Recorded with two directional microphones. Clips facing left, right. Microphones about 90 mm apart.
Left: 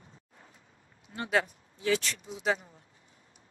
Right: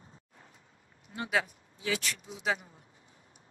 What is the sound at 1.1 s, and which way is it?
Speech, 10° right (ahead or behind).